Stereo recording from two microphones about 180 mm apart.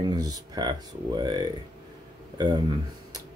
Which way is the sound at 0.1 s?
20° right (ahead or behind).